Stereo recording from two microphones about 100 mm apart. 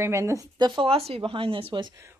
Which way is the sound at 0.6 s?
65° right (ahead or behind).